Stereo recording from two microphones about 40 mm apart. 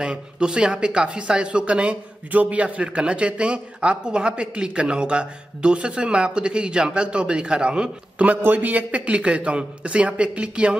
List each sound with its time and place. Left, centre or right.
0.0 s a man's voice: centre
8.5 s a man's voice: right